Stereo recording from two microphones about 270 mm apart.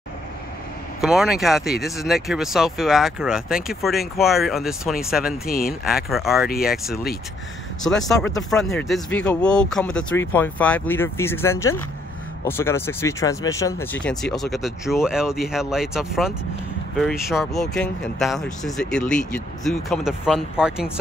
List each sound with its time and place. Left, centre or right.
1.0 s speech: centre
5.5 s speech: left
6.0 s speech: centre
6.4 s speech: left
7.8 s speech: centre